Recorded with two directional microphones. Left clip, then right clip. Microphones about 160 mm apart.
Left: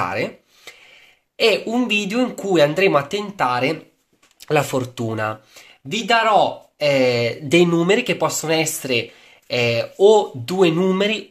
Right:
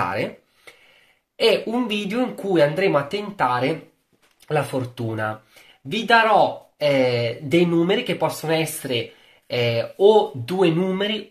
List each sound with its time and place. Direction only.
0.0 s speech: 20° left (ahead or behind)
1.3 s speech: 30° left (ahead or behind)
4.5 s speech: 40° left (ahead or behind)
5.9 s speech: 15° left (ahead or behind); by 11.2 s 40° left (ahead or behind)